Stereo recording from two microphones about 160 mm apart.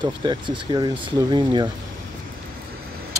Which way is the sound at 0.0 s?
30° right (ahead or behind).